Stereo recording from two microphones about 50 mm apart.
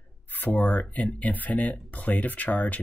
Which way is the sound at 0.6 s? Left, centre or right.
Left.